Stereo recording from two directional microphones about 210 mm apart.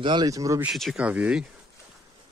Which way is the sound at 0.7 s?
Centre (ahead or behind).